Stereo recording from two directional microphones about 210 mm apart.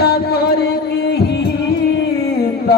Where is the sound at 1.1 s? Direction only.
50° left (ahead or behind).